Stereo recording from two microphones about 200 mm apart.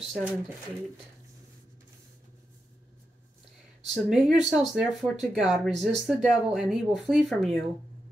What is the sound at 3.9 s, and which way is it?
Speech, 5° right (ahead or behind).